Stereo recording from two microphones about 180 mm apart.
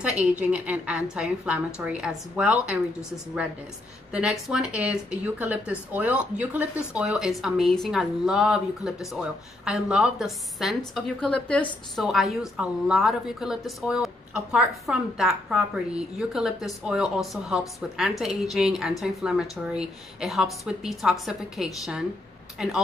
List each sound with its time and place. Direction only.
0.0 s a woman's voice: 5° right (ahead or behind)